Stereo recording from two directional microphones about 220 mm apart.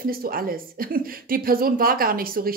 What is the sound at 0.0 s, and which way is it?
Speech, 40° right (ahead or behind).